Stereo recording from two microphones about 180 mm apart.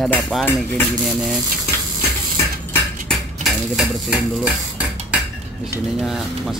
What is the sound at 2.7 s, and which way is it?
Cutlery, centre (ahead or behind).